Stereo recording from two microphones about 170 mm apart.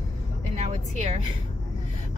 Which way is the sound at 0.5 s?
45° right (ahead or behind).